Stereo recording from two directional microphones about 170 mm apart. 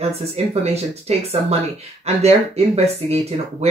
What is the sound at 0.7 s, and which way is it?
Speech, 35° right (ahead or behind).